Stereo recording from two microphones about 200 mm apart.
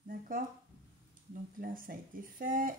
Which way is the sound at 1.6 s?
45° right (ahead or behind).